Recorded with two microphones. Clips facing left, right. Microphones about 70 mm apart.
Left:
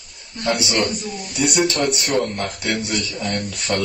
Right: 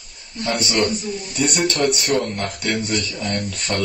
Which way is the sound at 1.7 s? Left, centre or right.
Centre.